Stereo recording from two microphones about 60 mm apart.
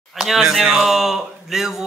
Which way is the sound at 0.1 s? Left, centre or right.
Centre.